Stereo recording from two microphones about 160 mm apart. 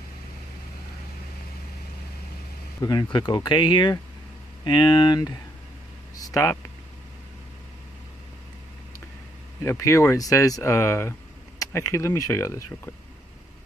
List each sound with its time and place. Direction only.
2.8 s speech: 25° left (ahead or behind)
9.6 s speech: 20° left (ahead or behind)